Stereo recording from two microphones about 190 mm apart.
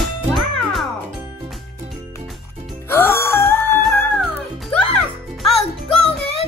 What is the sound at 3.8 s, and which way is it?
Music, 5° left (ahead or behind).